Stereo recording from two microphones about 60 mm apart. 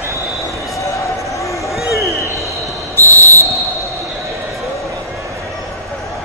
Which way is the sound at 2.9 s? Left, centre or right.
Left.